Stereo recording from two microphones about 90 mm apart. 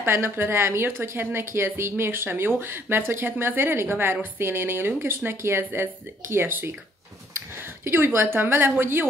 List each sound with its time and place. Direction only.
0.0 s a woman's voice: 25° right (ahead or behind)